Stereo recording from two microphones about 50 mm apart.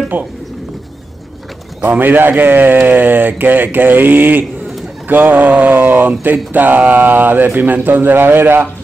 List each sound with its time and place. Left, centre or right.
0.1 s speech: right
1.8 s speech: right